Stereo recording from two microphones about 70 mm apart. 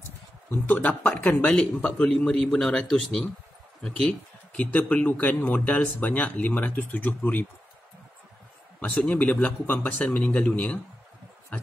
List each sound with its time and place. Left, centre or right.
0.5 s a man's voice: left
8.7 s speech: left